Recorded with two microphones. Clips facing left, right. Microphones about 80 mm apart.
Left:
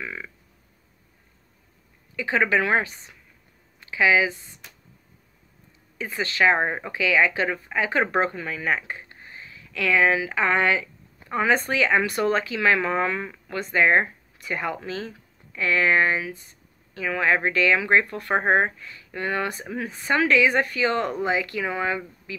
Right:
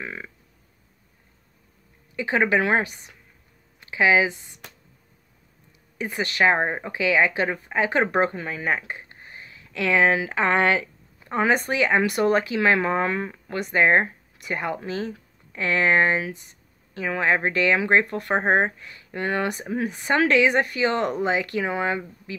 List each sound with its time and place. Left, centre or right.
0.0 s speech: right
2.1 s speech: right
3.9 s speech: right
5.9 s speech: right
11.2 s speech: right